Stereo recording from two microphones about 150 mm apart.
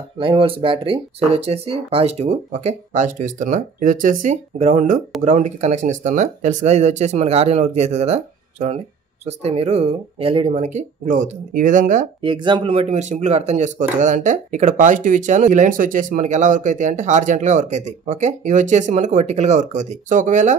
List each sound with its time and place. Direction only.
0.2 s speech: 35° right (ahead or behind); by 12.1 s 60° right (ahead or behind)
12.2 s speech: 30° right (ahead or behind); by 20.5 s 55° right (ahead or behind)